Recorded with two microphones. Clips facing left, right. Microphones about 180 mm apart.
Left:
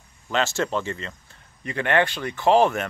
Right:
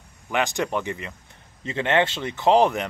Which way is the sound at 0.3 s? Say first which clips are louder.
Even; 15° right (ahead or behind).